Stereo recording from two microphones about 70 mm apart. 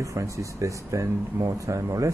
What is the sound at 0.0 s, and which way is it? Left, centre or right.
Speech, right.